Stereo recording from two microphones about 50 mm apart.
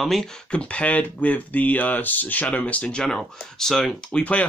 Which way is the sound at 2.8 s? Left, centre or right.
Centre.